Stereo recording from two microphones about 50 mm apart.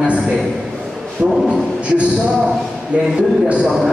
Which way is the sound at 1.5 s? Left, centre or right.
Right.